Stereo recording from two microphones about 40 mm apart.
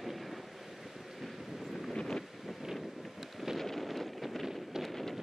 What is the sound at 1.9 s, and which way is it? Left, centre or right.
Wind, centre.